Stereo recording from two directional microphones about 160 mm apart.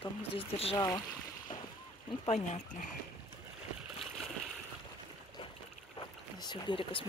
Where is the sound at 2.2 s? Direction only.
45° left (ahead or behind).